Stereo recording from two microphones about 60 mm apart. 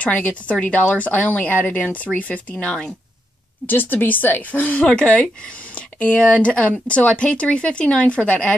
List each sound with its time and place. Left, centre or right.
0.0 s speech: left
2.5 s speech: centre
3.6 s speech: left; by 8.5 s centre